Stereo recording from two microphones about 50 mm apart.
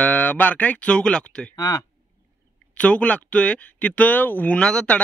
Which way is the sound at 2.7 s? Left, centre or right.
Left.